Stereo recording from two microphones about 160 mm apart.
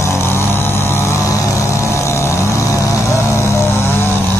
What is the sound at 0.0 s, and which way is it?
Vehicle, 15° left (ahead or behind).